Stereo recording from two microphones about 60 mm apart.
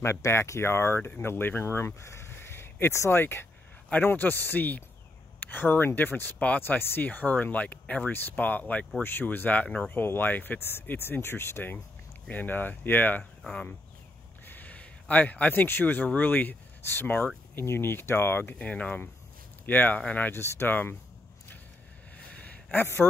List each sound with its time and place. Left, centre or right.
0.0 s speech: left
10.6 s speech: left
13.2 s speech: centre
14.4 s a sound: left
15.6 s speech: left
18.6 s speech: left
20.3 s speech: left
22.1 s a sound: left